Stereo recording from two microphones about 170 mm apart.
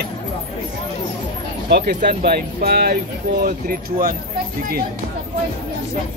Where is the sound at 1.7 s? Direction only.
70° right (ahead or behind).